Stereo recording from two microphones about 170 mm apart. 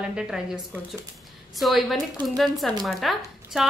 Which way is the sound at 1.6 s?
Centre (ahead or behind).